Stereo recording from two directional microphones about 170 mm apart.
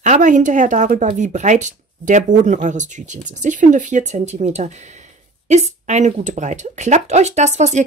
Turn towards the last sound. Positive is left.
turn(degrees=-45)  # may be behind; listen again after turning